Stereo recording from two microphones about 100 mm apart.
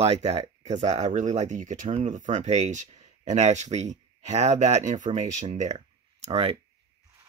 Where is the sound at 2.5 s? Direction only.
90° right.